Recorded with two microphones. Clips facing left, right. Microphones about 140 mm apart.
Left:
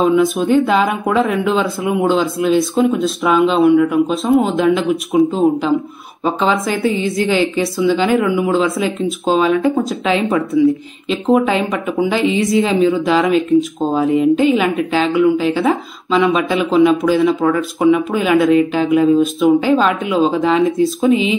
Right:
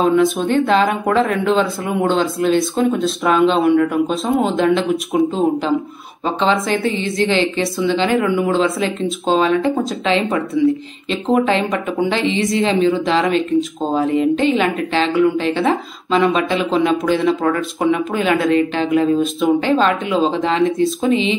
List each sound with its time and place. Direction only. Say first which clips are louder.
0.0 s speech: left 1 dB; centre (ahead or behind)
6.4 s a woman's voice: right 1 dB; 25° right (ahead or behind)
7.5 s a woman's voice: left 3 dB; 5° left (ahead or behind)
11.1 s a woman's voice: left 2 dB; centre (ahead or behind)